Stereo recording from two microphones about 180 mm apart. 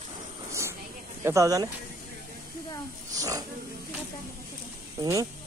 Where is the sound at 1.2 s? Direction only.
15° right (ahead or behind).